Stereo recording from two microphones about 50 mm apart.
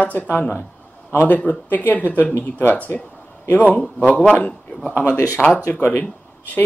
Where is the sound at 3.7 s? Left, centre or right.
Left.